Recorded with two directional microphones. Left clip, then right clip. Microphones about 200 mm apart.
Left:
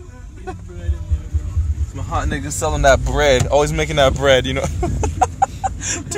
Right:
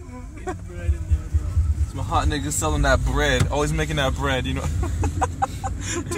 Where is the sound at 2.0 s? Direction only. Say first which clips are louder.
Even; 20° left (ahead or behind); by 5.3 s 50° left (ahead or behind).